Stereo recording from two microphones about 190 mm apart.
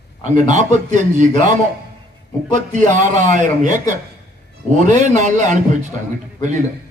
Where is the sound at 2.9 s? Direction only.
45° right (ahead or behind).